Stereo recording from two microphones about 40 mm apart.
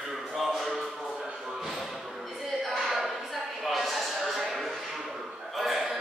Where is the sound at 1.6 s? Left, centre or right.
Centre.